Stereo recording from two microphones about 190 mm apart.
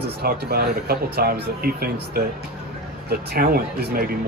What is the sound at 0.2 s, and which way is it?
Speech, 55° right (ahead or behind).